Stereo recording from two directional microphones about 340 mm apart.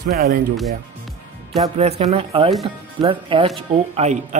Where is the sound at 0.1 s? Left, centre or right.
Right.